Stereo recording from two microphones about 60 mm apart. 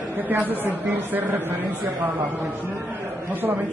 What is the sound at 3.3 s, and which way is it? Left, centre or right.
Speech, right.